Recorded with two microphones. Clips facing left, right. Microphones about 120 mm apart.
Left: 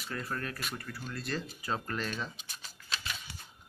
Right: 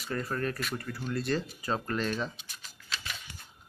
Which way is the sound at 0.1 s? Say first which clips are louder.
Right 6 dB; centre (ahead or behind).